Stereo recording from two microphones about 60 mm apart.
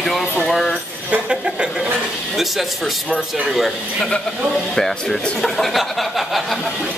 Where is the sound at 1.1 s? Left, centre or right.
Centre.